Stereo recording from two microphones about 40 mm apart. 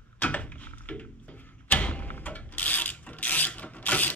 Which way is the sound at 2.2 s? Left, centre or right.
Left.